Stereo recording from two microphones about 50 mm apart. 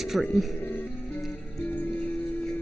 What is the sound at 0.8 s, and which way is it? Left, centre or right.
Music, left.